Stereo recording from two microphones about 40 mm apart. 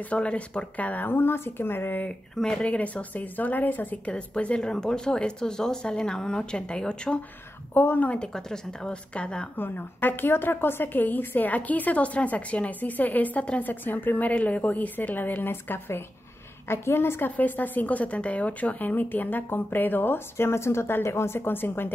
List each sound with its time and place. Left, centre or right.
0.1 s speech: left
1.0 s a woman's voice: left
2.5 s speech: left
4.1 s speech: left
7.7 s speech: left
8.3 s speech: centre
9.1 s speech: left
9.6 s a woman's voice: left
14.3 s a woman's voice: left
16.6 s a woman's voice: left
17.4 s a woman's voice: left